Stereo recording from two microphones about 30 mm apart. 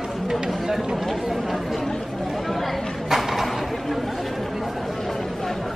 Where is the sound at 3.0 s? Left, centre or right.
Centre.